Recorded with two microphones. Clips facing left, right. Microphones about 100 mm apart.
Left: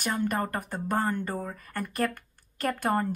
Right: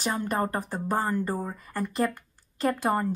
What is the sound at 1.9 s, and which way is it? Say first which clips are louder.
Speech: right 2 dB; 25° right (ahead or behind).